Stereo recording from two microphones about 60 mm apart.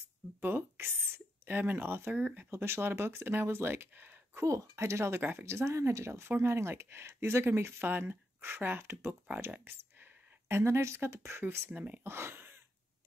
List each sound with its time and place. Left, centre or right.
0.4 s speech: right
2.5 s speech: right
4.5 s speech: right
10.5 s speech: right
11.7 s speech: right
12.1 s speech: right